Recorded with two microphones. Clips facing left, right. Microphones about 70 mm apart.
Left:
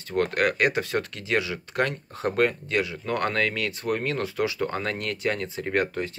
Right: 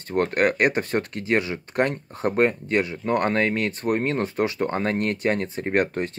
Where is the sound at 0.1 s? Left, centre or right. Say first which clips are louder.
Right 3 dB; right.